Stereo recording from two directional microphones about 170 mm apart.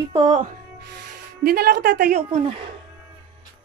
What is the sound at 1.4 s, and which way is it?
Speech, 65° right (ahead or behind).